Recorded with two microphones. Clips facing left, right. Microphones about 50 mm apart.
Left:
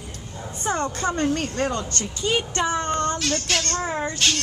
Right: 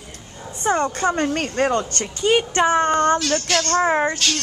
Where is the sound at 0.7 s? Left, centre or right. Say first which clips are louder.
Right 5 dB; right.